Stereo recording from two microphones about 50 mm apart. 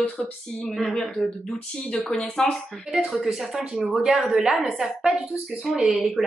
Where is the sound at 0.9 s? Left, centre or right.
Centre.